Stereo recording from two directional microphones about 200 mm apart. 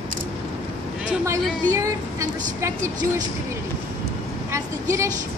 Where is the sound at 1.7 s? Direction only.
15° right (ahead or behind).